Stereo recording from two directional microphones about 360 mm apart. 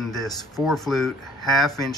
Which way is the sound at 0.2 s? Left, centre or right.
Centre.